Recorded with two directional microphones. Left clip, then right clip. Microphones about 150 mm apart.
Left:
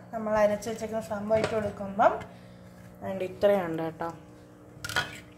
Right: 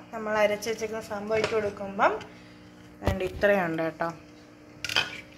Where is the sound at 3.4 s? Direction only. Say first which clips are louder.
Right 1 dB; 5° right (ahead or behind).